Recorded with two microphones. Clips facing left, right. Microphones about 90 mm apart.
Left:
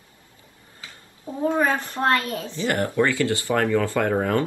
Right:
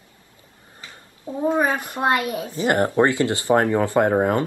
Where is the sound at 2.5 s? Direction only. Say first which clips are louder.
Right 4 dB; 25° right (ahead or behind).